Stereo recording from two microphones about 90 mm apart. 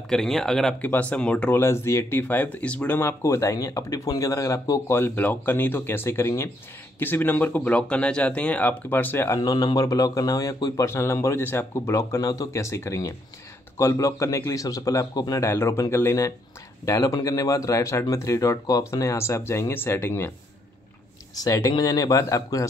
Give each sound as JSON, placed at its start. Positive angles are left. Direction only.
{"t": 0.1, "sound": "speech", "side_deg": 5}
{"t": 0.7, "sound": "speech", "side_deg": 15}
{"t": 1.6, "sound": "speech", "side_deg": 30}
{"t": 3.0, "sound": "a man's voice", "side_deg": 30}
{"t": 4.9, "sound": "speech", "side_deg": 20}
{"t": 9.4, "sound": "a man's voice", "side_deg": 45}
{"t": 15.4, "sound": "a man's voice", "side_deg": 25}
{"t": 21.4, "sound": "a man's voice", "side_deg": 40}